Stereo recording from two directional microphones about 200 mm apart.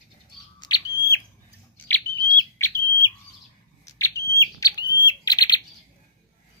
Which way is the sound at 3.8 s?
15° left (ahead or behind).